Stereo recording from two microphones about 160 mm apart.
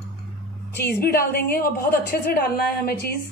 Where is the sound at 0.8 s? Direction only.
70° left (ahead or behind).